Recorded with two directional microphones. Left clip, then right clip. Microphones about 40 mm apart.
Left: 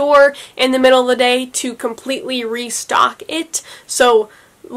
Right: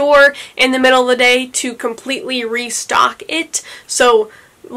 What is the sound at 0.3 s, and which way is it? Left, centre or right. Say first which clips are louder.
Speech: right 2 dB; left.